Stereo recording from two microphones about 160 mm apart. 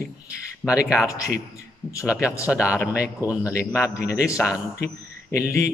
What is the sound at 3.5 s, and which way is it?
Speech, 20° left (ahead or behind).